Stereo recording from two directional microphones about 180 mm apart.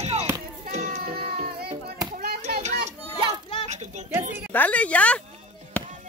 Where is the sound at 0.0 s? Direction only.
35° right (ahead or behind).